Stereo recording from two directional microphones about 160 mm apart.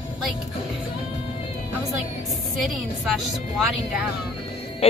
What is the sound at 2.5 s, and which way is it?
A woman's voice, centre (ahead or behind).